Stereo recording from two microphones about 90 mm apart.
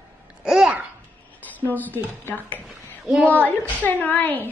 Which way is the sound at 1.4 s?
20° left (ahead or behind).